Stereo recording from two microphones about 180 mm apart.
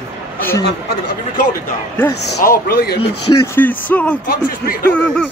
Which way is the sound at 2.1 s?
65° left (ahead or behind).